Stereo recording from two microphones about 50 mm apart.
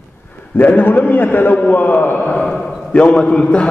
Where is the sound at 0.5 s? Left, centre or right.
Left.